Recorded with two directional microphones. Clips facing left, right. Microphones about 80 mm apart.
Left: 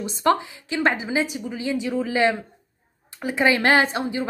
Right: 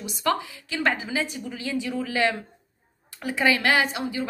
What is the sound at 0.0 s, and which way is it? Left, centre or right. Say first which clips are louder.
A woman's voice: left 5 dB; left.